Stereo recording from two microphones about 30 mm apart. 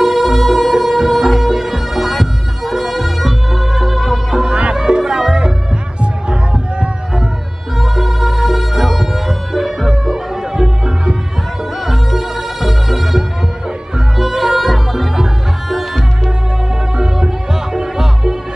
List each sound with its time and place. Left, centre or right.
0.0 s music: centre
4.7 s music: right
5.0 s music: centre
6.2 s music: right
7.8 s music: centre
11.8 s music: centre
14.2 s music: centre
16.9 s music: right